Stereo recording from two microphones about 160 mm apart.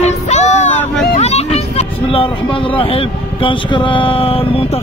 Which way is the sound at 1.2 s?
40° left (ahead or behind).